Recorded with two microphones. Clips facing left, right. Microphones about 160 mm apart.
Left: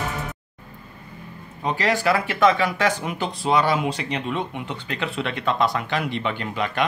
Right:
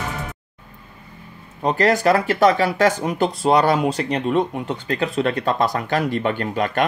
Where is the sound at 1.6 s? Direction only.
40° right (ahead or behind).